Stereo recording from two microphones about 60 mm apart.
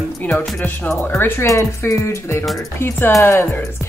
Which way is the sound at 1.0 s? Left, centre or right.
Left.